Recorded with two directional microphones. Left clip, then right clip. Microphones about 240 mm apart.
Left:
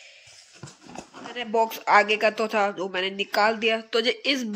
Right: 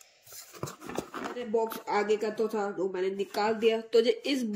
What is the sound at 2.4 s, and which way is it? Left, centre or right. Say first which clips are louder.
Speech: left 6 dB; left.